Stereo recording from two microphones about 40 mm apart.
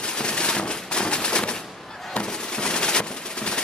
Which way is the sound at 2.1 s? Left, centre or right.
Left.